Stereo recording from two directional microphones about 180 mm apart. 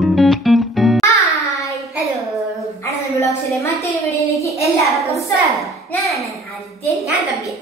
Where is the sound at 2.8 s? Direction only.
15° left (ahead or behind).